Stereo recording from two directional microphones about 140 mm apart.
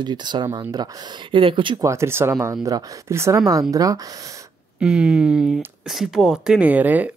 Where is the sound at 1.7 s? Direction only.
20° right (ahead or behind).